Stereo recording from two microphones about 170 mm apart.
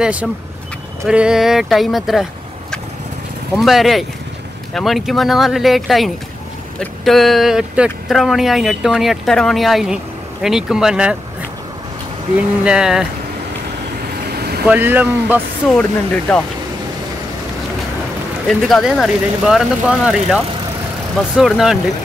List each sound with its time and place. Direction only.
0.0 s speech: 5° right (ahead or behind)
3.5 s speech: centre (ahead or behind)
12.6 s speech: 5° right (ahead or behind)
14.3 s vehicle: 70° right (ahead or behind)
14.7 s speech: 10° right (ahead or behind)
15.8 s speech: 5° left (ahead or behind)
18.5 s speech: centre (ahead or behind)